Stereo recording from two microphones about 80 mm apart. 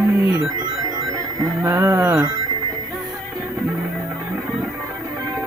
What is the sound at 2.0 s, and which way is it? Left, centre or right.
Music, right.